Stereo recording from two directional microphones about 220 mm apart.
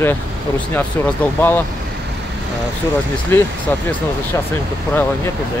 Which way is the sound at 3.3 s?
10° left (ahead or behind).